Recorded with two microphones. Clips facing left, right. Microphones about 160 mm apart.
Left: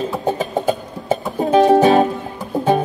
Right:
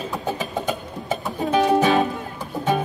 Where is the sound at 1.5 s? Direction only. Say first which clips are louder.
Left 6 dB; 35° left (ahead or behind).